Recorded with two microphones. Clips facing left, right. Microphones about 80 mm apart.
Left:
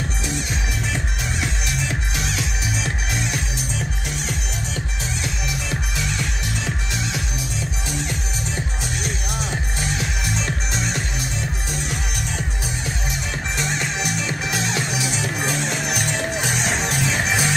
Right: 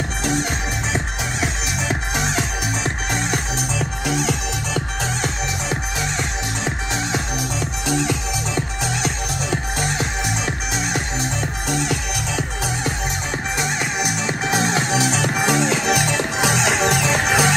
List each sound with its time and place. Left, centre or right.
0.9 s music: right
2.8 s music: right
3.5 s music: right
5.7 s music: right
7.8 s music: right
11.7 s music: right
13.6 s music: centre
14.2 s music: right
15.0 s music: right